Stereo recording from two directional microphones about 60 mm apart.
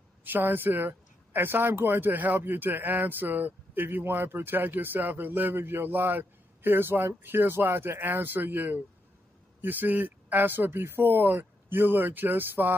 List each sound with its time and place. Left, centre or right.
0.2 s speech: right